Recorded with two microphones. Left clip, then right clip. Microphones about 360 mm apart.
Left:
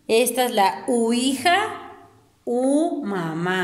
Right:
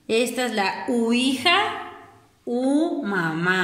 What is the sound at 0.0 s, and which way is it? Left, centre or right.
A woman's voice, left.